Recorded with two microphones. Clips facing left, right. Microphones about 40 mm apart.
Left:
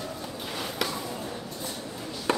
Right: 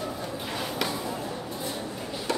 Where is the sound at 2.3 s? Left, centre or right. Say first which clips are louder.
Left 3 dB; left.